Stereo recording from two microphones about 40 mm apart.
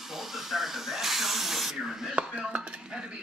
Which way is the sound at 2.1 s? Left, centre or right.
Right.